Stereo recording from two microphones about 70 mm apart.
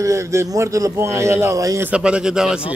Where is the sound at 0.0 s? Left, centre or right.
Right.